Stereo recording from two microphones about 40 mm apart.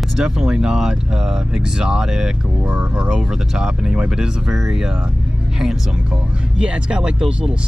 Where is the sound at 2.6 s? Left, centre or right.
Right.